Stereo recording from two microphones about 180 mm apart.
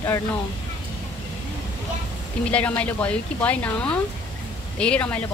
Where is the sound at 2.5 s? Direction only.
10° left (ahead or behind).